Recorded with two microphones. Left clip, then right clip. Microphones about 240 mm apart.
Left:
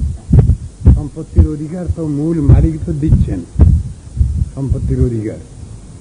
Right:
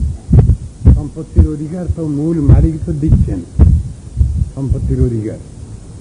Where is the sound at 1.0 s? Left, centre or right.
Right.